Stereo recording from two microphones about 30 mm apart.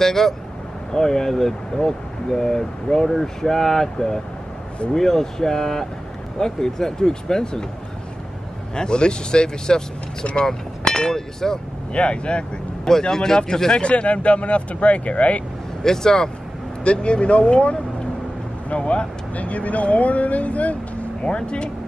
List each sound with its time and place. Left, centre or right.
0.0 s speech: centre
8.7 s speech: left
10.4 s speech: centre
11.9 s speech: left
13.1 s speech: centre
13.7 s speech: left
15.8 s speech: centre
16.8 s speech: left
18.8 s vehicle: left
19.3 s speech: left
21.2 s speech: left